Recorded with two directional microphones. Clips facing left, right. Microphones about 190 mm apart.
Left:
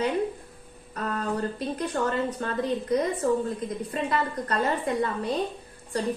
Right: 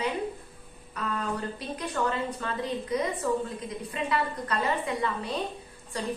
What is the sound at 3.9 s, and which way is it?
A woman's voice, 45° left (ahead or behind).